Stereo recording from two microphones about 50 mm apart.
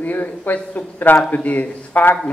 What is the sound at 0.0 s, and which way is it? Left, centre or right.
Speech, left.